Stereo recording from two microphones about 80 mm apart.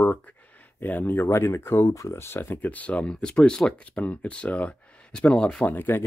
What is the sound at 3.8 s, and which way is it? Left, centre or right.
Speech, centre.